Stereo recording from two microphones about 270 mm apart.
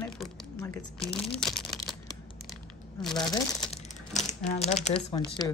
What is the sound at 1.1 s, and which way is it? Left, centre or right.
Speech, centre.